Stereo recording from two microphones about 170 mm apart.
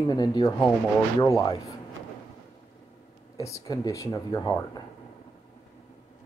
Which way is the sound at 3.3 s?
20° left (ahead or behind).